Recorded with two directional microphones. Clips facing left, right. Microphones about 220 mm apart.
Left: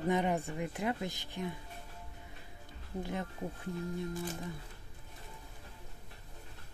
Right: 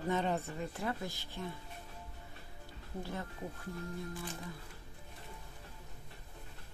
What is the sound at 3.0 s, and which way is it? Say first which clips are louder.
Speech: left 4 dB; 20° left (ahead or behind).